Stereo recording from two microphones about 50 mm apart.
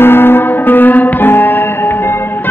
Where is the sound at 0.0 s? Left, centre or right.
Left.